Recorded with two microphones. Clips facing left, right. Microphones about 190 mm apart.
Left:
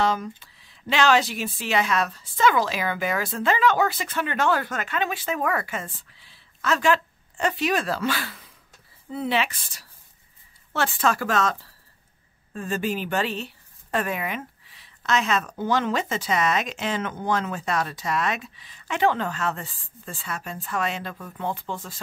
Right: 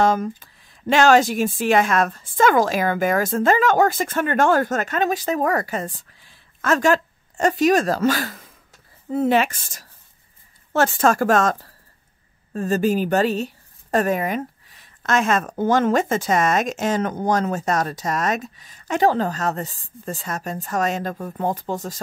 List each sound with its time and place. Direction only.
0.0 s a woman's voice: 50° right (ahead or behind)